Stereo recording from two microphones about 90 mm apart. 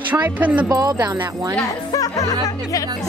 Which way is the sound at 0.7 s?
45° right (ahead or behind).